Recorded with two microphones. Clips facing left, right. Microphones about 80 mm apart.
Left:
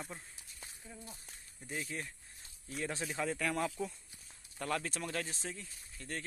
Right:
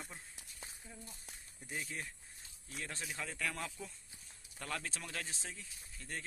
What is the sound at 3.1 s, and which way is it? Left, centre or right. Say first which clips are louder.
Speech: left 6 dB; centre.